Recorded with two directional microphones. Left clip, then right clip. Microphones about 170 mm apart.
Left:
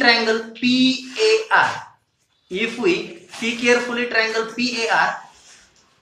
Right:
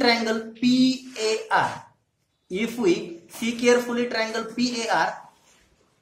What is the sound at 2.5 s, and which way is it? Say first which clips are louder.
A man's voice: left 3 dB; 90° right.